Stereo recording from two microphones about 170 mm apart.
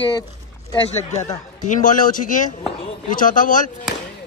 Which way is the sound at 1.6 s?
50° left (ahead or behind).